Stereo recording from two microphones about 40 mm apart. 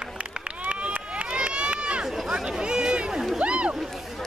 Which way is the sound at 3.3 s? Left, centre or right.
Right.